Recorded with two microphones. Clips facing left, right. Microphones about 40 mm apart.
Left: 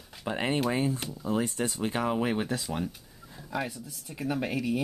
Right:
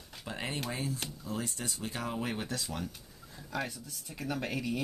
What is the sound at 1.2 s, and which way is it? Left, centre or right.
Speech, left.